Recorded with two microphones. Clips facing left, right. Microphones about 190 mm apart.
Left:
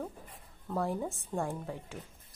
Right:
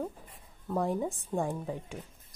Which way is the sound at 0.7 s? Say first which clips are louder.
Right 3 dB; 15° right (ahead or behind).